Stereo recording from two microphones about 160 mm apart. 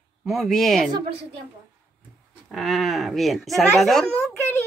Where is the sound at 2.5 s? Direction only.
Centre (ahead or behind).